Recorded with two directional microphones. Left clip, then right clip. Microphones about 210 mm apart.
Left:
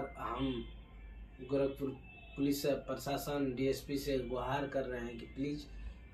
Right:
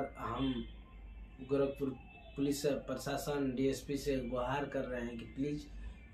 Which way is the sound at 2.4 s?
20° right (ahead or behind).